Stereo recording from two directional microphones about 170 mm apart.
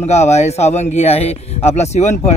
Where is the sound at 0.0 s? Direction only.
40° left (ahead or behind).